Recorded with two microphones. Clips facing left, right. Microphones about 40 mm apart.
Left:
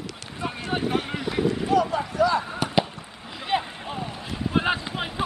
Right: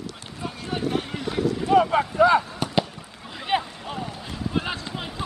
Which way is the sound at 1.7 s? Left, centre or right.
Right.